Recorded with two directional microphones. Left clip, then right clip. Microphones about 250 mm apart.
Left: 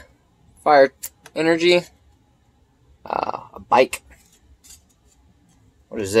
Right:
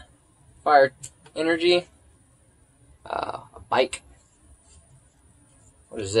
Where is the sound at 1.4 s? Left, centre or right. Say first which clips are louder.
Left 4 dB; left.